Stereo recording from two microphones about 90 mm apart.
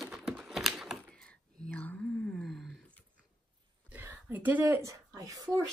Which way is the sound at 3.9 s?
20° right (ahead or behind).